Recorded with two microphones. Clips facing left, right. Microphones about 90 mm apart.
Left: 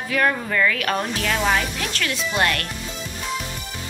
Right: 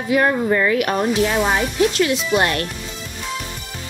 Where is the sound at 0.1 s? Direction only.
25° right (ahead or behind).